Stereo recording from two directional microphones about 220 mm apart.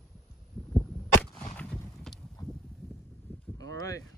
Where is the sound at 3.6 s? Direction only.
15° left (ahead or behind).